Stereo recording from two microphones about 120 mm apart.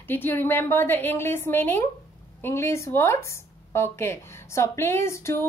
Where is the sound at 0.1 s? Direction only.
15° left (ahead or behind).